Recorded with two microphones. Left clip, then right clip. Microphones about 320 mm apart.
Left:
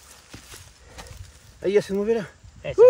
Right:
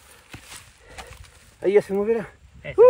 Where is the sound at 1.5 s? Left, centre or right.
Centre.